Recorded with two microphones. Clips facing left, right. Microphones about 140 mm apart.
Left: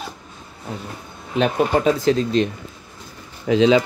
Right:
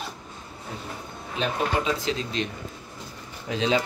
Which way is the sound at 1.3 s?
50° left (ahead or behind).